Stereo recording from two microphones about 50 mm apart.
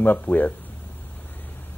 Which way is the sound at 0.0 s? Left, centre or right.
Left.